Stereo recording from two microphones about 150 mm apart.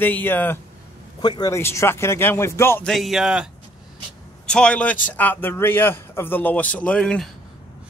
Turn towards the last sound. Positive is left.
turn(degrees=5)  # may be behind; listen again after turning